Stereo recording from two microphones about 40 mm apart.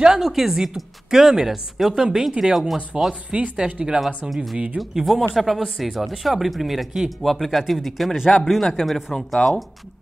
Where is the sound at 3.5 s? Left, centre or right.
Right.